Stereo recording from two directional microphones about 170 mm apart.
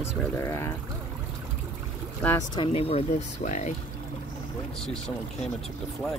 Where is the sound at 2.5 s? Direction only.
30° left (ahead or behind).